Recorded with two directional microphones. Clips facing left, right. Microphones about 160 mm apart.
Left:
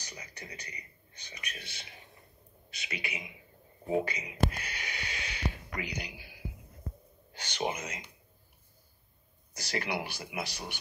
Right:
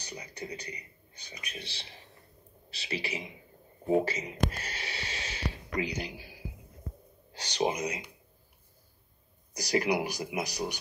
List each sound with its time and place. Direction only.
0.0 s a man's voice: 30° right (ahead or behind)
4.5 s a sound: 40° right (ahead or behind)
7.4 s a man's voice: 40° right (ahead or behind)
7.7 s speech: 15° right (ahead or behind)
9.6 s a man's voice: 40° right (ahead or behind)